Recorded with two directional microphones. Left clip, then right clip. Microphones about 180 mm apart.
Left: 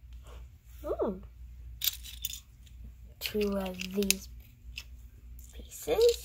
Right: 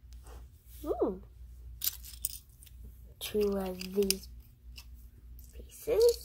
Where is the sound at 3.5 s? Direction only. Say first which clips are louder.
Even; 25° right (ahead or behind).